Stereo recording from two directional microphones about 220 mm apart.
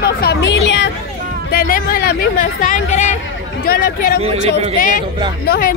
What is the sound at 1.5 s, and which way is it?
Speech, 40° left (ahead or behind).